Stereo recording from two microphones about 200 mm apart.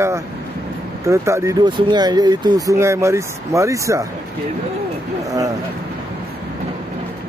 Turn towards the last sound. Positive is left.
turn(degrees=-15)  # may be behind; listen again after turning